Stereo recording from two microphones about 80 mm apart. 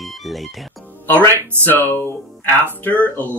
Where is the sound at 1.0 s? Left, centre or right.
Left.